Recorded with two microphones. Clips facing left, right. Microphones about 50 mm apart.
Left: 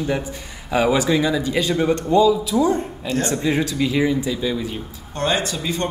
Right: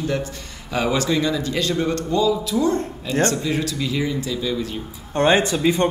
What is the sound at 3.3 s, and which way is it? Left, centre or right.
Speech, left.